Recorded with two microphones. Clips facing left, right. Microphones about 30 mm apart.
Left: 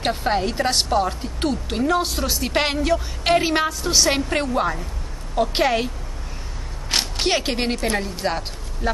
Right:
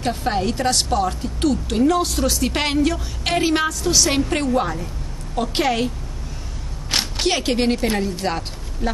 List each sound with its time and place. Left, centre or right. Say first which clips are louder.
0.2 s speech: even; centre
4.1 s speech: right 2 dB; centre
6.9 s single-lens reflex camera: even; centre
7.2 s speech: right 4 dB; centre